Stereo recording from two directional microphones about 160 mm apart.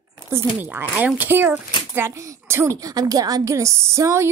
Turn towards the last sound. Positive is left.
turn(degrees=-20)  # may be behind; listen again after turning